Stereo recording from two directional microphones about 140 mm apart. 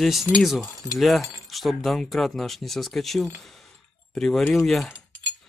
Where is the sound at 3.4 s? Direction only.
Centre (ahead or behind).